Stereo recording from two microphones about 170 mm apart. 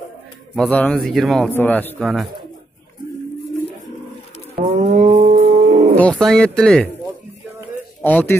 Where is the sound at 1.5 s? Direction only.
10° left (ahead or behind).